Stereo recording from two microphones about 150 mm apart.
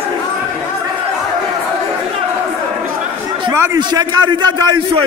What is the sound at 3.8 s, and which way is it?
A man's voice, 30° right (ahead or behind).